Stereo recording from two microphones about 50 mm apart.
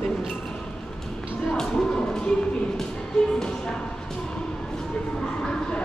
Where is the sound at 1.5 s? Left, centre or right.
Centre.